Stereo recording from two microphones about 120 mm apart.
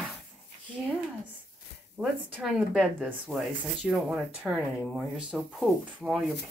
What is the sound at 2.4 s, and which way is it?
Speech, centre (ahead or behind).